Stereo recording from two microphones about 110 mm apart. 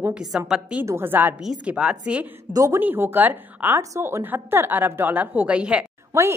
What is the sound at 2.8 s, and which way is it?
A woman's voice, 15° right (ahead or behind).